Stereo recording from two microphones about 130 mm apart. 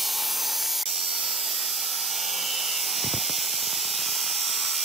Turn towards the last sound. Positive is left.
turn(degrees=0)  # may be behind; listen again after turning